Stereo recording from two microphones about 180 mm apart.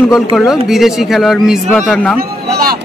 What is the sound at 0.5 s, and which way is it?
Speech, centre (ahead or behind).